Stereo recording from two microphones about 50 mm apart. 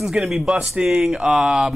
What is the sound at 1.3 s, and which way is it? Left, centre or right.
Speech, centre.